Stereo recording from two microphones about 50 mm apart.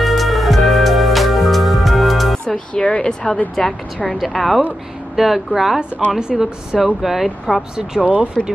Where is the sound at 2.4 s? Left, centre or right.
Centre.